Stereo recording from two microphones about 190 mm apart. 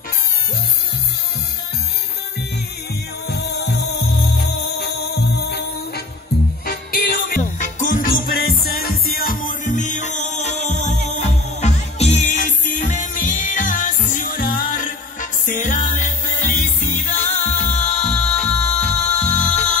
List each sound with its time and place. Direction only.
3.3 s music: 60° left (ahead or behind); by 19.8 s 40° left (ahead or behind)